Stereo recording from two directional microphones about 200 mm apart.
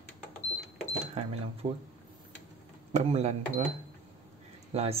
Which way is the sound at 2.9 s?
35° right (ahead or behind).